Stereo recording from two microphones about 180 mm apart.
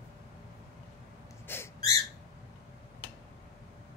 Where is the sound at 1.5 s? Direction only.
10° left (ahead or behind).